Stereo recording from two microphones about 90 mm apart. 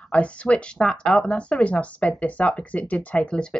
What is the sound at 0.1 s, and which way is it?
Speech, 15° left (ahead or behind).